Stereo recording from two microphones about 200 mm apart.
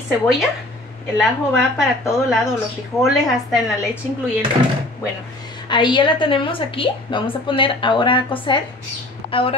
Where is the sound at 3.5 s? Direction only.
Centre (ahead or behind).